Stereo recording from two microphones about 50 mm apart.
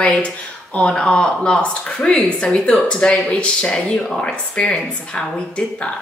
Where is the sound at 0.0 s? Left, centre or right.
Left.